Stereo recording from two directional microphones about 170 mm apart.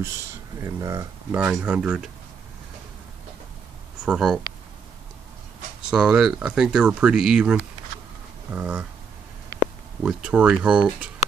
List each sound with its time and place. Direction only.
0.0 s speech: 15° right (ahead or behind)
1.3 s speech: 5° right (ahead or behind)
4.0 s speech: centre (ahead or behind)
5.8 s speech: 5° right (ahead or behind)
10.0 s speech: 5° right (ahead or behind)